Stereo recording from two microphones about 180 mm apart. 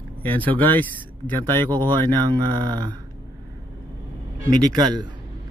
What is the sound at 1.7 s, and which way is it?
Speech, 25° right (ahead or behind).